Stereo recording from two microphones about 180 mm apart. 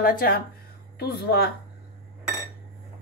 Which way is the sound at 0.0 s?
55° left (ahead or behind).